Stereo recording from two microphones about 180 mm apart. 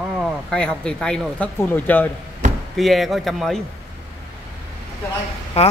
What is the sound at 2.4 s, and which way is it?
Chop, 45° right (ahead or behind).